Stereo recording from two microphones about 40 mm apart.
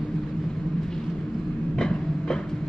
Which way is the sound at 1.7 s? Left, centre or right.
Centre.